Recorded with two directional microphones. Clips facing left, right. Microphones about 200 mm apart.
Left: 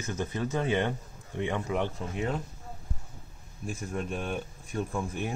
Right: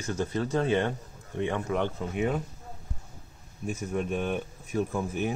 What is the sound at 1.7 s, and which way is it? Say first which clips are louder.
Speech: right 2 dB; centre (ahead or behind).